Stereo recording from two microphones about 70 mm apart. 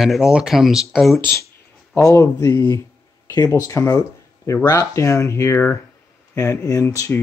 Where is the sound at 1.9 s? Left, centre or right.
Left.